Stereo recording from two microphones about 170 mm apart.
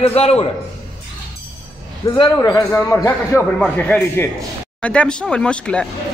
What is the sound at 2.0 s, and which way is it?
Speech, 20° left (ahead or behind).